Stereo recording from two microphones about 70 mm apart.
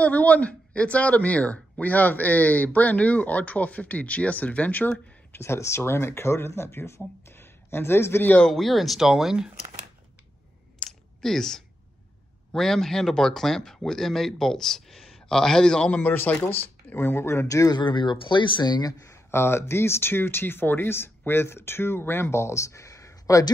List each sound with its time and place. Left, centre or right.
0.0 s speech: centre
5.3 s speech: left
7.2 s a sound: left
8.5 s speech: centre
10.8 s a sound: centre
12.5 s speech: centre
16.0 s speech: left
17.5 s speech: left
17.7 s speech: left
19.0 s speech: left